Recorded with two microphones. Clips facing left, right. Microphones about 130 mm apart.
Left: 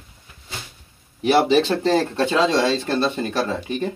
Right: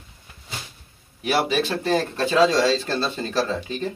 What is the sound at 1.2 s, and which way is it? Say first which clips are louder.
Speech: left 6 dB; 25° left (ahead or behind).